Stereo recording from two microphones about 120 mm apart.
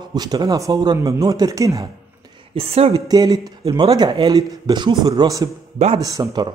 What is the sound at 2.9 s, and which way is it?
Speech, 35° right (ahead or behind).